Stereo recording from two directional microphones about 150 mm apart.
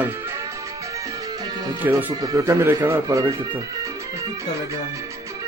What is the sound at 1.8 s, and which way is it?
Speech, 25° right (ahead or behind).